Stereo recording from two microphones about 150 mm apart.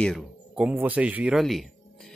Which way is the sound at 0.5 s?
10° right (ahead or behind).